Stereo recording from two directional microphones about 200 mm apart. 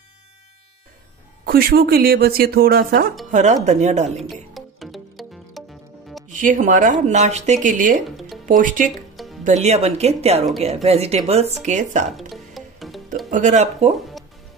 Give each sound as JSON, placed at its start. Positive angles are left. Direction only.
{"t": 1.4, "sound": "speech", "side_deg": -50}
{"t": 3.3, "sound": "speech", "side_deg": -35}
{"t": 4.2, "sound": "music", "side_deg": 0}
{"t": 6.2, "sound": "speech", "side_deg": -40}
{"t": 8.9, "sound": "music", "side_deg": 0}
{"t": 9.4, "sound": "speech", "side_deg": -35}
{"t": 12.1, "sound": "music", "side_deg": 0}
{"t": 13.3, "sound": "speech", "side_deg": -35}
{"t": 13.9, "sound": "music", "side_deg": 0}